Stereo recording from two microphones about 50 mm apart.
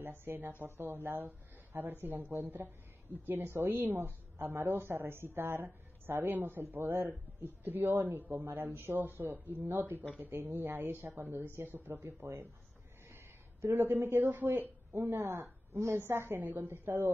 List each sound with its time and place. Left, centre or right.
0.0 s a woman's voice: right
4.5 s a woman's voice: right
13.1 s a sound: right
14.3 s speech: right
15.0 s a woman's voice: right
16.3 s a woman's voice: right